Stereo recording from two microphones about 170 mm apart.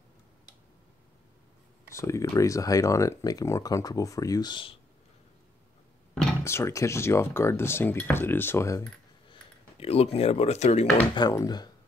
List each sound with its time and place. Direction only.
2.0 s speech: 15° left (ahead or behind)
6.4 s speech: 15° left (ahead or behind)
9.3 s speech: 35° left (ahead or behind)
11.1 s speech: 25° left (ahead or behind)